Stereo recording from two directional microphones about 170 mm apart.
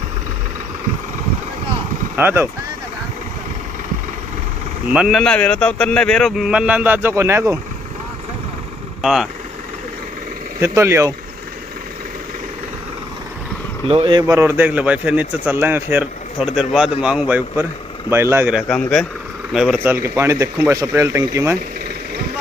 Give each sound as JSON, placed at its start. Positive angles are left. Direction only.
{"t": 2.1, "sound": "a man's voice", "side_deg": -10}
{"t": 4.9, "sound": "speech", "side_deg": 0}
{"t": 9.0, "sound": "speech", "side_deg": 0}
{"t": 10.6, "sound": "a man's voice", "side_deg": -15}
{"t": 13.8, "sound": "speech", "side_deg": -30}
{"t": 14.2, "sound": "a man's voice", "side_deg": -15}
{"t": 18.6, "sound": "a man's voice", "side_deg": 5}